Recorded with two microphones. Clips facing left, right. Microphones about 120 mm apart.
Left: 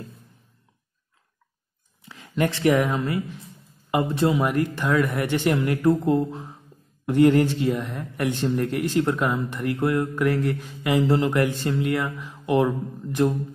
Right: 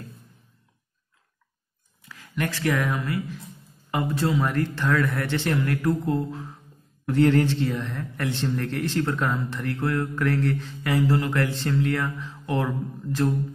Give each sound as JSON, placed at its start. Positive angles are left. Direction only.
{"t": 2.0, "sound": "speech", "side_deg": 20}